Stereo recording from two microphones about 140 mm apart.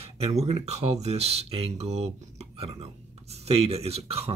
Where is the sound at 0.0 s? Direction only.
45° right (ahead or behind).